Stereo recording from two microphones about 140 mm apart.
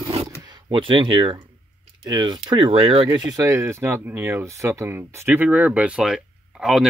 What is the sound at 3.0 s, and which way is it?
Speech, 25° right (ahead or behind).